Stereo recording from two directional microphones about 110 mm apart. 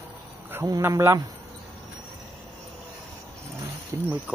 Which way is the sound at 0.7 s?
25° right (ahead or behind).